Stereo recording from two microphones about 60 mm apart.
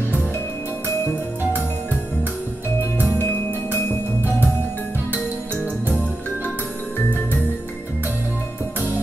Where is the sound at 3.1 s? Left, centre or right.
Left.